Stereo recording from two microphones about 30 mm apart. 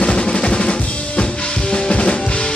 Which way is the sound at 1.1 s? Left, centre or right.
Left.